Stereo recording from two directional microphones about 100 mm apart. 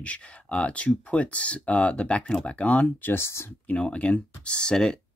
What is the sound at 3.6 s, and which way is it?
Speech, 10° left (ahead or behind).